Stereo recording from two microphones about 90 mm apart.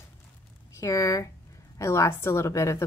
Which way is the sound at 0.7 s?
35° left (ahead or behind).